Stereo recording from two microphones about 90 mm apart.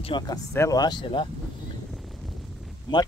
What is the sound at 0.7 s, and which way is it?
Speech, 45° left (ahead or behind).